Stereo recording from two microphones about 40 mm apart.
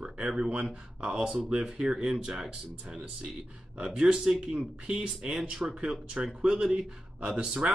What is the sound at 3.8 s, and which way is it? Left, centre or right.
Speech, right.